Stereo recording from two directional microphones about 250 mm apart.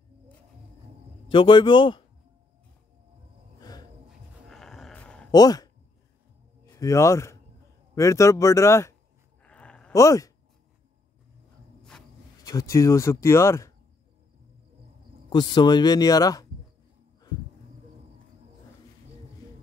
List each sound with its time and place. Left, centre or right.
1.3 s a man's voice: centre
4.5 s a sound: centre
5.3 s speech: centre
6.7 s a man's voice: centre
9.4 s a sound: centre
12.4 s speech: centre
15.2 s speech: centre